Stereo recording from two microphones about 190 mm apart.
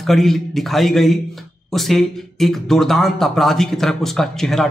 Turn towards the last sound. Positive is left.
turn(degrees=0)  # may be behind; listen again after turning